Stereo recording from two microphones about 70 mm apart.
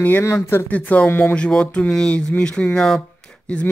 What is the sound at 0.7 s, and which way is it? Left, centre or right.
Speech, left.